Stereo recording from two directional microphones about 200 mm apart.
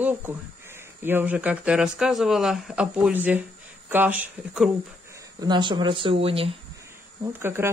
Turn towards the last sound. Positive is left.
turn(degrees=-10)  # may be behind; listen again after turning